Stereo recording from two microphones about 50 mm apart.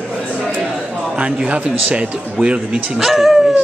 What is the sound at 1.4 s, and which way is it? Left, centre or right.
A man's voice, right.